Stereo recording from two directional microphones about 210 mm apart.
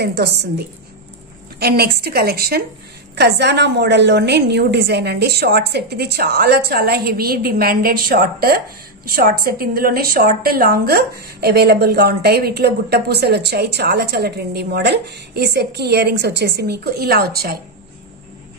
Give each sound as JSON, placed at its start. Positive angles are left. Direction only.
{"t": 0.0, "sound": "a woman's voice", "side_deg": -55}